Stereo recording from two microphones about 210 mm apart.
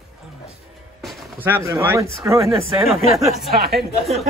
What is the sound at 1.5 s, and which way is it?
Speech, 15° right (ahead or behind).